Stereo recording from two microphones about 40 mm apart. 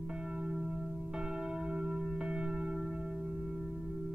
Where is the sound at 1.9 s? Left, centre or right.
Centre.